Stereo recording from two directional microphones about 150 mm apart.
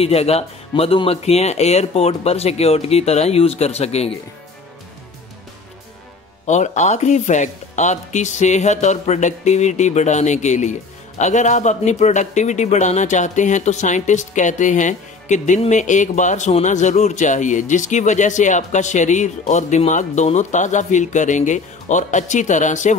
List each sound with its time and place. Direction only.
0.0 s speech: 40° left (ahead or behind)
6.4 s a man's voice: 50° left (ahead or behind)